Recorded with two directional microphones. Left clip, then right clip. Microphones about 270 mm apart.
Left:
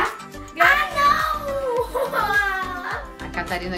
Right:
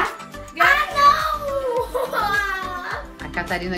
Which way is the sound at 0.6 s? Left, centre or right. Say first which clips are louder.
Right 1 dB; centre.